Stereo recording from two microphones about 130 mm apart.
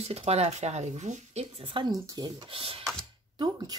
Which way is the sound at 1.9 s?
30° right (ahead or behind).